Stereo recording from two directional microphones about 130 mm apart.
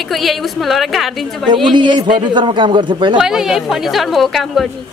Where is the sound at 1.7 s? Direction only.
35° right (ahead or behind).